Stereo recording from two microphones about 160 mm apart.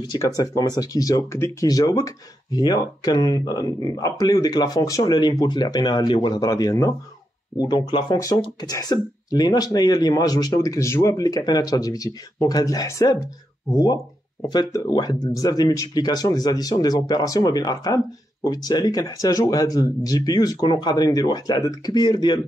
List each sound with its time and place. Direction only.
0.4 s speech: 20° left (ahead or behind)